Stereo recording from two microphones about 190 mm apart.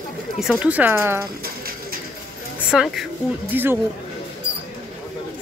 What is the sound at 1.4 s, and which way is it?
Pigeon, 50° right (ahead or behind).